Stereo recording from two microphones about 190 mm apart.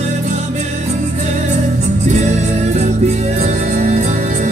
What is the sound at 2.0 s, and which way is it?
Music, 40° right (ahead or behind).